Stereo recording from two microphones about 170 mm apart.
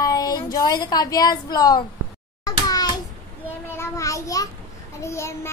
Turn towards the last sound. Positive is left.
turn(degrees=15)  # may be behind; listen again after turning